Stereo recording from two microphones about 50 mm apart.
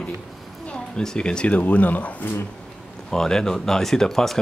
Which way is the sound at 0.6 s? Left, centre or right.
Centre.